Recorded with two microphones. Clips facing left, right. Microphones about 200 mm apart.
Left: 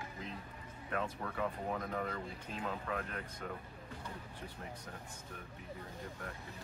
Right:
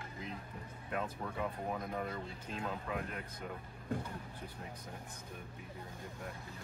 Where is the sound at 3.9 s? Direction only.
50° right (ahead or behind).